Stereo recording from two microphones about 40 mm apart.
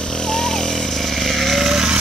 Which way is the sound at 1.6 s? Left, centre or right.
Centre.